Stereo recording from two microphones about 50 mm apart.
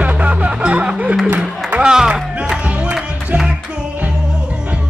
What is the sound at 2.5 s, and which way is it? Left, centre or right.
Music, right.